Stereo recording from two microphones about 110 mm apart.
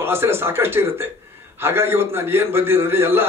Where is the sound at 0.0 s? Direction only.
20° right (ahead or behind).